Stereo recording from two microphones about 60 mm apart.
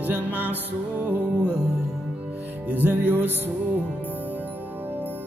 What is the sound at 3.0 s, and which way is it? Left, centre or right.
Music, right.